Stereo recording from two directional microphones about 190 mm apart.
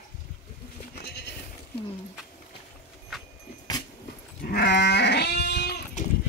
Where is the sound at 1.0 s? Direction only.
60° left (ahead or behind).